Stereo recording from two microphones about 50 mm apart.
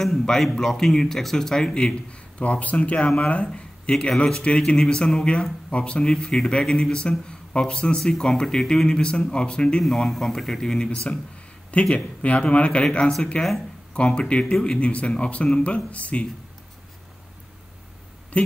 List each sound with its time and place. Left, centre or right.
0.0 s a man's voice: centre; by 3.4 s left
3.5 s a sound: left
4.2 s speech: centre
9.8 s speech: centre
11.7 s speech: left